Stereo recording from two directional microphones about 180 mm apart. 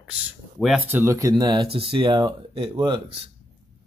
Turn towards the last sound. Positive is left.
turn(degrees=-30)  # may be behind; listen again after turning